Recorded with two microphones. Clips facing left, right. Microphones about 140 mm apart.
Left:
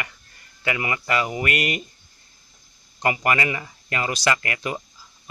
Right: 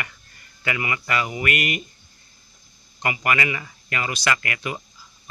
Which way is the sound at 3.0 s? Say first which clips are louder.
Left 2 dB; 30° left (ahead or behind).